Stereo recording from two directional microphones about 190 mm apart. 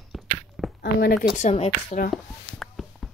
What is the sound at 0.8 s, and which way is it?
Speech, 55° left (ahead or behind).